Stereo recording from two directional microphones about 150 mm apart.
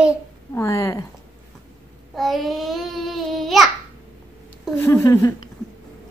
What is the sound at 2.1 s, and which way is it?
Babbling, centre (ahead or behind).